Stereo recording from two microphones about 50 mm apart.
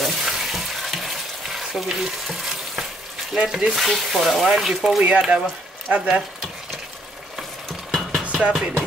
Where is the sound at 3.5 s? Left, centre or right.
Centre.